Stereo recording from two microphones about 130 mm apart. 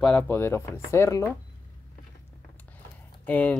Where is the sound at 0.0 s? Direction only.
10° left (ahead or behind).